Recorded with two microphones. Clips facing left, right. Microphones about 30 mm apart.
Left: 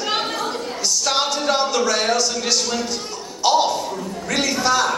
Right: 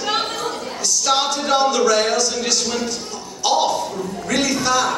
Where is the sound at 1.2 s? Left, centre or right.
Centre.